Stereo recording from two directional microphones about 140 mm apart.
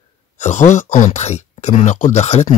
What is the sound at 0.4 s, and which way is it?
Speech, 60° left (ahead or behind).